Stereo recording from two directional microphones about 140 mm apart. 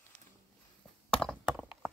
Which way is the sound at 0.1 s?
10° left (ahead or behind).